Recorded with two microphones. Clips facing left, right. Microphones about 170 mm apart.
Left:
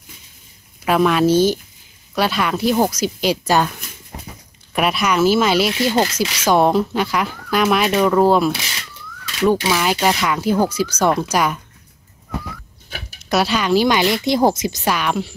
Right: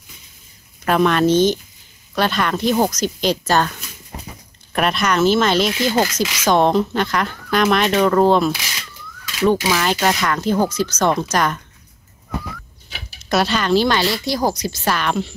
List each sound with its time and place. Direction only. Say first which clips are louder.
0.8 s speech: even; 5° left (ahead or behind)
4.7 s speech: even; 5° left (ahead or behind)
9.7 s speech: left 1 dB; 5° left (ahead or behind)
13.3 s speech: even; 5° left (ahead or behind)